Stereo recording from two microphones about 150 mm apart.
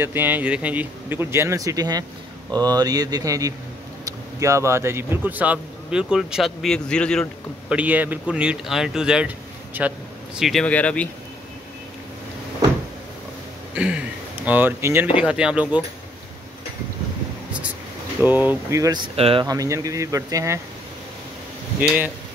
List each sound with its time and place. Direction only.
0.0 s speech: 15° right (ahead or behind); by 7.2 s 5° left (ahead or behind)
7.7 s speech: 10° right (ahead or behind); by 11.1 s 10° left (ahead or behind)
13.7 s speech: 10° right (ahead or behind)
18.2 s speech: 10° right (ahead or behind)
19.1 s speech: 40° right (ahead or behind)
19.4 s speech: 25° right (ahead or behind)
21.8 s speech: 10° right (ahead or behind)